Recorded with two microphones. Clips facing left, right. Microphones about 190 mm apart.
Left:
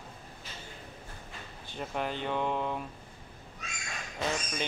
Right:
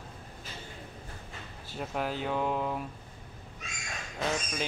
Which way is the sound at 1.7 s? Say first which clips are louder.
Right 1 dB; 5° right (ahead or behind).